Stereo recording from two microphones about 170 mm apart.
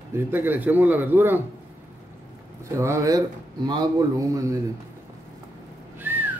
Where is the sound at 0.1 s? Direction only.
10° right (ahead or behind).